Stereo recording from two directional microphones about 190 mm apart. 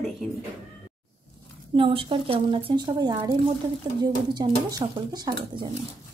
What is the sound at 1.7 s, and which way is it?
Speech, 30° right (ahead or behind).